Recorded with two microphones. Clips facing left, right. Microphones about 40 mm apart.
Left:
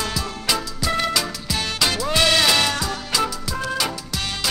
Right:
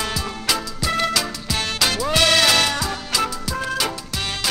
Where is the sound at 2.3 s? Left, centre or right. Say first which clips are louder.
Right 2 dB; centre.